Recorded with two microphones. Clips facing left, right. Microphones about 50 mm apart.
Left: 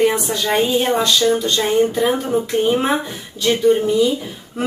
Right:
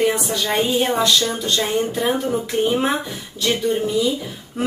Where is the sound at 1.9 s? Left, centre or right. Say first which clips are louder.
Left 3 dB; centre.